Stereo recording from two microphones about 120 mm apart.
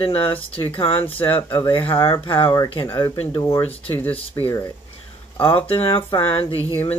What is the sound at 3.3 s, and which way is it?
Speech, 25° left (ahead or behind).